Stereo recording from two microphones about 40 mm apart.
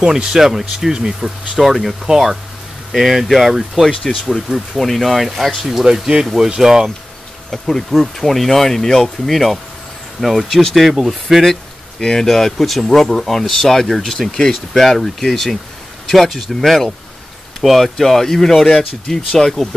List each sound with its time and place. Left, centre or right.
0.0 s speech: centre
1.6 s speech: centre
6.5 s speech: centre
7.5 s speech: centre
12.0 s speech: centre